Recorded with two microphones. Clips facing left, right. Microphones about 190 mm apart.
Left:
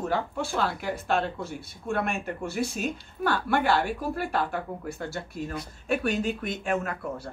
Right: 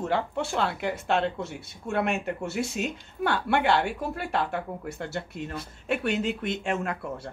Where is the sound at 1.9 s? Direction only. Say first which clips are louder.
Right 3 dB; 25° right (ahead or behind).